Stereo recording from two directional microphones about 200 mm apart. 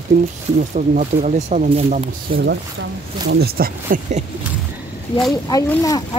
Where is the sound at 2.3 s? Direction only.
55° right (ahead or behind).